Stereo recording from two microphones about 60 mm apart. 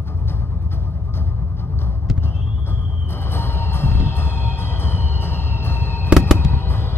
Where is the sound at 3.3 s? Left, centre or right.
Left.